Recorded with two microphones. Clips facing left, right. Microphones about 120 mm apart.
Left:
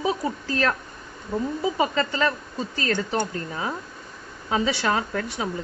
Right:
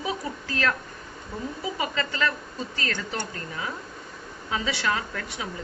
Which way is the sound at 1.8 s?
35° left (ahead or behind).